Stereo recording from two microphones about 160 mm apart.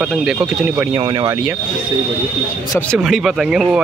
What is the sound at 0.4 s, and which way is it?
Speech, 20° right (ahead or behind).